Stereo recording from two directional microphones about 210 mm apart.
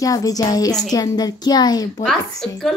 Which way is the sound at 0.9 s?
20° left (ahead or behind).